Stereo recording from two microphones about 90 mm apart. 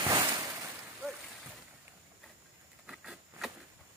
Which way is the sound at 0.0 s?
45° right (ahead or behind).